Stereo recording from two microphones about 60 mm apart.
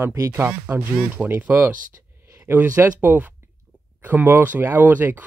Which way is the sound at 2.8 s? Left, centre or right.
Right.